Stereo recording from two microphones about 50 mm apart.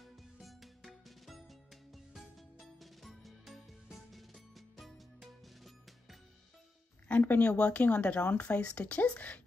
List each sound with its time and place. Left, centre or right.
0.0 s music: centre
7.1 s speech: left